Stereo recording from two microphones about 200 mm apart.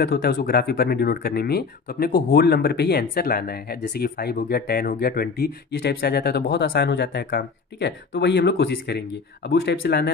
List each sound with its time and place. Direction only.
0.0 s speech: 55° left (ahead or behind)